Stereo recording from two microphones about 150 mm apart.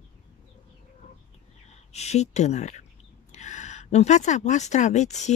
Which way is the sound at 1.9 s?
45° left (ahead or behind).